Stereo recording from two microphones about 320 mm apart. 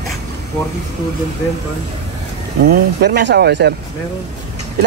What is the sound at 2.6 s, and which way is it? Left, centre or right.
Speech, right.